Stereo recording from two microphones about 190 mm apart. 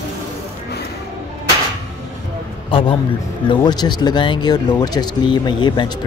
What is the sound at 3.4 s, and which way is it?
Speech, 20° left (ahead or behind).